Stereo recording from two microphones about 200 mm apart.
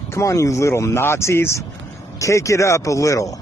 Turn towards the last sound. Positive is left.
turn(degrees=15)  # may be behind; listen again after turning